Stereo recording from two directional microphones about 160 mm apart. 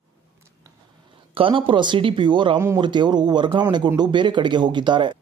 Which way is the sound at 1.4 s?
35° right (ahead or behind).